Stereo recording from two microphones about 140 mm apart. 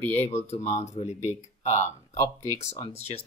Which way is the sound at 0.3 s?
50° left (ahead or behind).